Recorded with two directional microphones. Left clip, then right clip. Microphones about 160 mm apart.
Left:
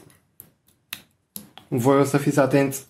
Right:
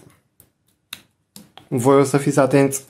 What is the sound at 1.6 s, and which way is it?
Speech, 25° right (ahead or behind).